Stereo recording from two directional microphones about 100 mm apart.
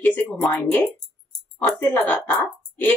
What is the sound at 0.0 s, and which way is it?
Speech, 15° left (ahead or behind).